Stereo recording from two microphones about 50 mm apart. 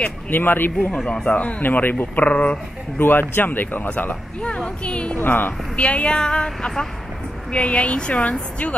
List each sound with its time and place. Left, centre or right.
0.3 s speech: left
0.9 s speech: centre
1.3 s speech: left
1.6 s speech: left
3.0 s speech: left
5.1 s speech: left
5.8 s speech: left